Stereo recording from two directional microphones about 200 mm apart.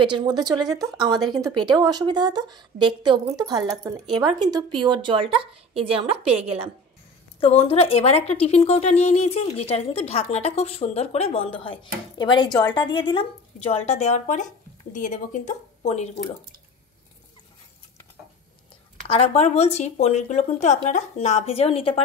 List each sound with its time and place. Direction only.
0.0 s speech: 20° right (ahead or behind)
7.3 s speech: 30° left (ahead or behind)
19.0 s speech: 30° left (ahead or behind)